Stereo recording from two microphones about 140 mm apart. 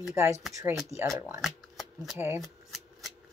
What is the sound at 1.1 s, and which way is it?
Speech, 20° right (ahead or behind).